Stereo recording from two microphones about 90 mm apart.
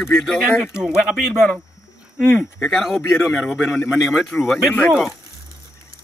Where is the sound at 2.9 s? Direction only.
30° left (ahead or behind).